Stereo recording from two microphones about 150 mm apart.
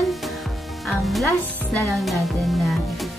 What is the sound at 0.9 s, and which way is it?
Music, centre (ahead or behind).